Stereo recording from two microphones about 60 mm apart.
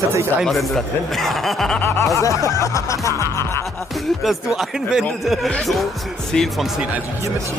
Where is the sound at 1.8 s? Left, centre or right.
Left.